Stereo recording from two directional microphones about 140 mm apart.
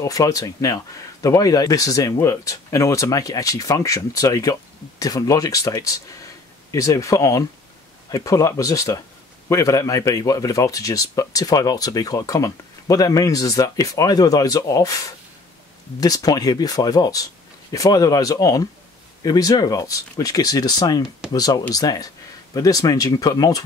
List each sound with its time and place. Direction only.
0.0 s speech: 25° left (ahead or behind)